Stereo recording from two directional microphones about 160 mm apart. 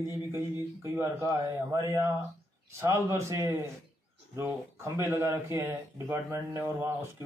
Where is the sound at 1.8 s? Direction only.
20° right (ahead or behind).